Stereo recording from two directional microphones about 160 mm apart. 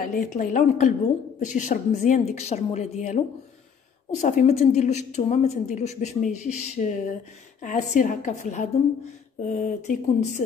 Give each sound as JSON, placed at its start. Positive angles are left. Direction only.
{"t": 0.0, "sound": "a woman's voice", "side_deg": 60}
{"t": 4.2, "sound": "a woman's voice", "side_deg": 45}